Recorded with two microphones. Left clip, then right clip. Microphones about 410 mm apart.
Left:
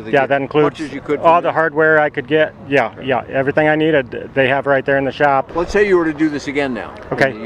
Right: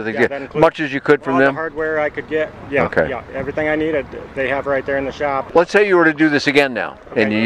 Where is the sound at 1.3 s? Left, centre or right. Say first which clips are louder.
Left 3 dB; left.